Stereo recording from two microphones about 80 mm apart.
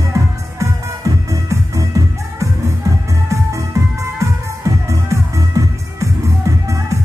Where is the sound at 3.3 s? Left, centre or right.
Right.